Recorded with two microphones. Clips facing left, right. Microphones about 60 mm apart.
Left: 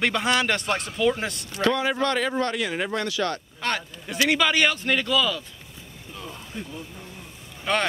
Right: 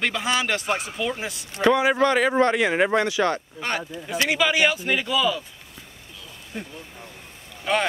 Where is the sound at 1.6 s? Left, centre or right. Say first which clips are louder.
Right 4 dB; centre.